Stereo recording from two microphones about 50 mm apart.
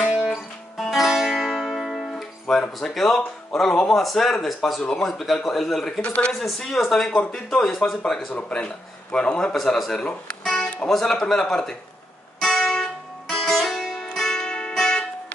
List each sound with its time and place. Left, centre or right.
0.0 s music: centre
2.9 s speech: centre
6.0 s speech: left
7.6 s speech: centre
8.4 s a man's voice: left
9.5 s speech: centre
9.9 s guitar: centre
10.9 s a man's voice: centre
12.4 s music: centre